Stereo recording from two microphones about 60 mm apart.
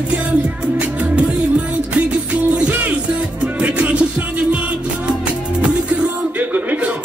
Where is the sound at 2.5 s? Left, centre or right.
Right.